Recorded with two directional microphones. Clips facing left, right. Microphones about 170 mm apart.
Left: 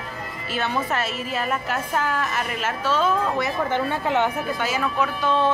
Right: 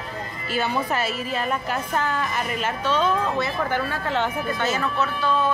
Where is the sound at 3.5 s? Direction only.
20° left (ahead or behind).